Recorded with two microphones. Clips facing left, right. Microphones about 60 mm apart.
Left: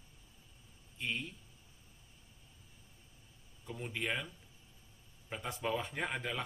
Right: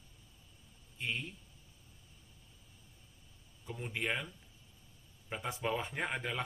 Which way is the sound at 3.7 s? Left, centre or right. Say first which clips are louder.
Right 1 dB; centre.